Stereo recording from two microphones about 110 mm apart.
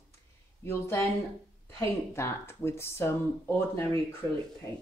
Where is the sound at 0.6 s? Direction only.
20° left (ahead or behind).